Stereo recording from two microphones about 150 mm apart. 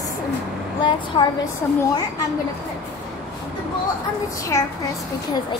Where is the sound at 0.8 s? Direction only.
30° left (ahead or behind).